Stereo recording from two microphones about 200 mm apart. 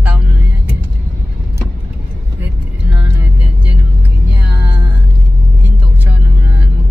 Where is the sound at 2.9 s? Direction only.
5° right (ahead or behind).